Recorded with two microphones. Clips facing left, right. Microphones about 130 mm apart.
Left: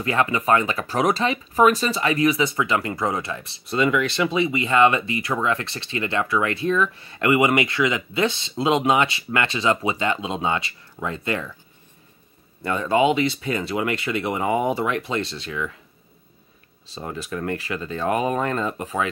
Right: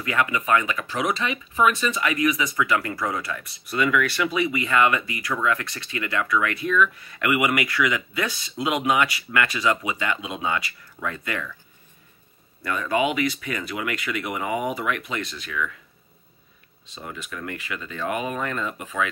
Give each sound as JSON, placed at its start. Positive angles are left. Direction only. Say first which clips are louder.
{"t": 0.0, "sound": "speech", "louder": "left 3 dB", "side_deg": 30}
{"t": 12.6, "sound": "speech", "louder": "left 4 dB", "side_deg": 30}
{"t": 16.8, "sound": "speech", "louder": "left 5 dB", "side_deg": 35}